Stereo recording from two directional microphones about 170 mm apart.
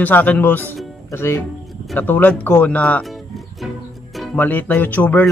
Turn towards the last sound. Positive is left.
turn(degrees=10)  # may be behind; listen again after turning